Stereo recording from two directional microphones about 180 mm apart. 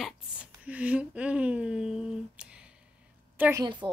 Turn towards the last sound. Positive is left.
turn(degrees=-25)  # may be behind; listen again after turning